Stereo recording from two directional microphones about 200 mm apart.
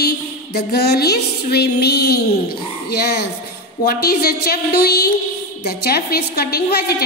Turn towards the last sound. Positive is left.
turn(degrees=50)  # may be behind; listen again after turning